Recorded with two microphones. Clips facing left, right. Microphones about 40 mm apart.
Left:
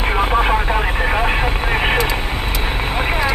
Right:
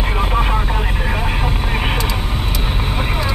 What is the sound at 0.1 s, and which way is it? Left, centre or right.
Vehicle, left.